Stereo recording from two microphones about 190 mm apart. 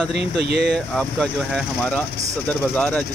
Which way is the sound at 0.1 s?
60° right (ahead or behind).